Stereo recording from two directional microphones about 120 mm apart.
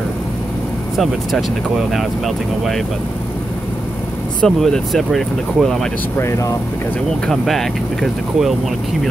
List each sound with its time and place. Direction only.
0.9 s speech: centre (ahead or behind)
4.4 s speech: 5° left (ahead or behind)
6.1 s speech: 25° left (ahead or behind)
7.1 s speech: 5° left (ahead or behind)